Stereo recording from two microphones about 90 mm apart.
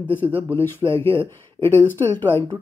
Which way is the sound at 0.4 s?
25° left (ahead or behind).